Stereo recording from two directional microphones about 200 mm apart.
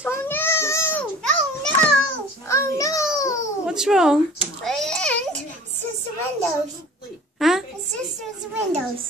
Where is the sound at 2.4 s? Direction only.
15° left (ahead or behind).